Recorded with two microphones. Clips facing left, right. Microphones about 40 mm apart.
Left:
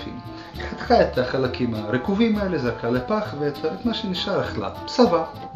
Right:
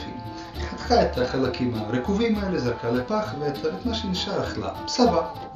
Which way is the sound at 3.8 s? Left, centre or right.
Left.